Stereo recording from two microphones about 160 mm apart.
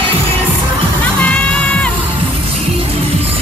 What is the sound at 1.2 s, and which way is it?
Music, 10° left (ahead or behind).